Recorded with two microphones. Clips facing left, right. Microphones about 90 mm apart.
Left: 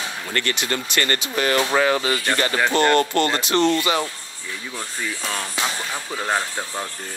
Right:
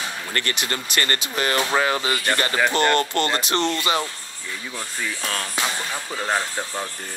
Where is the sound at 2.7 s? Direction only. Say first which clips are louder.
Left 5 dB; 20° left (ahead or behind).